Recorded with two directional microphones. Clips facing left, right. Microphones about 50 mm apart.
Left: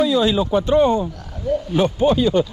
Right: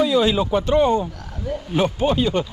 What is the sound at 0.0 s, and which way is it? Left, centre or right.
Speech, right.